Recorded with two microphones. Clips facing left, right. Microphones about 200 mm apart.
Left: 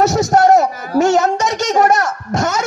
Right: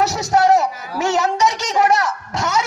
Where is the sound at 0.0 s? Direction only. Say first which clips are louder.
Left 4 dB; 45° left (ahead or behind).